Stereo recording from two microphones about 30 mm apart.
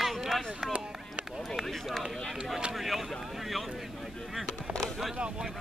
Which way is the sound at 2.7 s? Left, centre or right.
Centre.